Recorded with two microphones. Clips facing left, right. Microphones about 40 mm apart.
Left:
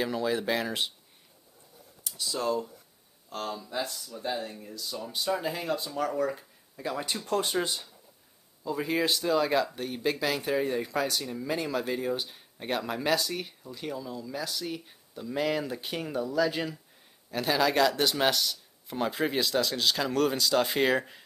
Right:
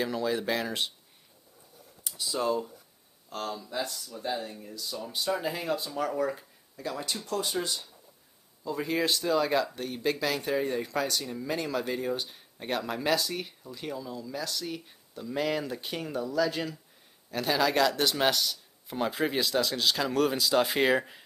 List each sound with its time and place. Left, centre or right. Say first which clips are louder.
0.0 s speech: left 1 dB; centre
2.0 s speech: right 1 dB; centre
3.3 s speech: even; centre
6.8 s speech: left 2 dB; centre
7.3 s speech: left 3 dB; left
8.6 s speech: left 1 dB; centre